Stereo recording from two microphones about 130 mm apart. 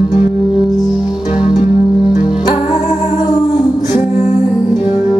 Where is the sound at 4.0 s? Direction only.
55° left (ahead or behind).